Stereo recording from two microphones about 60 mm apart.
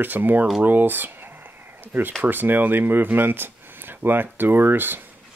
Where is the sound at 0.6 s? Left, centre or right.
Right.